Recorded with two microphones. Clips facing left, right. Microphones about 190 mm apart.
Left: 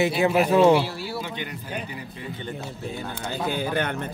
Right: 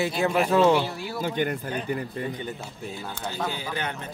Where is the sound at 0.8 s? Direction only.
5° left (ahead or behind).